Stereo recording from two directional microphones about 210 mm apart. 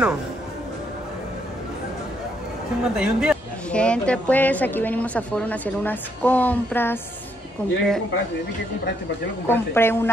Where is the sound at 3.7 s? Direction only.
5° left (ahead or behind).